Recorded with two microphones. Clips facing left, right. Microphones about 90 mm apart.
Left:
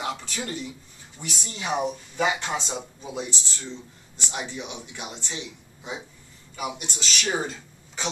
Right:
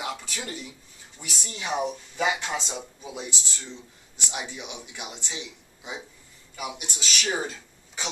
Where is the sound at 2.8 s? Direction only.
5° right (ahead or behind).